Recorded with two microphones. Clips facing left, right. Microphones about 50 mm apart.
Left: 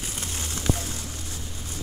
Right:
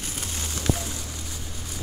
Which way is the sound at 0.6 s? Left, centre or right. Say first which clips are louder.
Even; centre.